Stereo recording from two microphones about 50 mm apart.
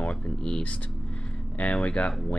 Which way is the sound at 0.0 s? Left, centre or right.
Centre.